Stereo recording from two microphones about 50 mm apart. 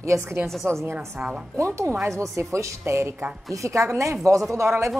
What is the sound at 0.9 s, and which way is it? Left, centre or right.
Speech, centre.